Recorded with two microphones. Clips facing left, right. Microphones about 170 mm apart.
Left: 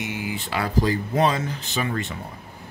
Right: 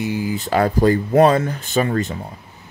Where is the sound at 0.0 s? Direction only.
35° right (ahead or behind).